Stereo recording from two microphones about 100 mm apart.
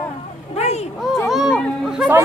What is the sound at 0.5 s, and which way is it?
Speech, 90° left.